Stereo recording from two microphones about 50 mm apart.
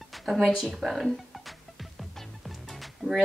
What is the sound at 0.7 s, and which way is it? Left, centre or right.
Music, centre.